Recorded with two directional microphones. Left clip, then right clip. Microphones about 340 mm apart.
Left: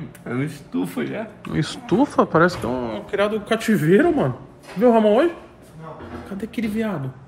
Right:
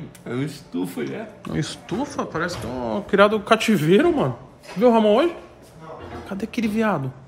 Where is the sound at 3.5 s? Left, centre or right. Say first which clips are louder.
Even; centre.